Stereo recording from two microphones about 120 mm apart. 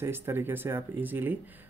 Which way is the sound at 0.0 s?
20° right (ahead or behind).